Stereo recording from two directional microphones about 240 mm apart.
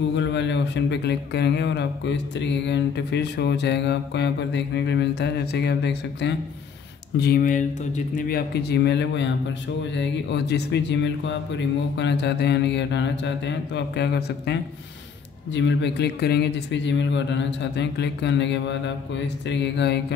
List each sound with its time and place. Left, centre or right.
0.1 s speech: left